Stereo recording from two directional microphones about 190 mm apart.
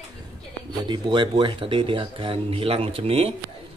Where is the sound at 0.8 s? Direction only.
25° right (ahead or behind).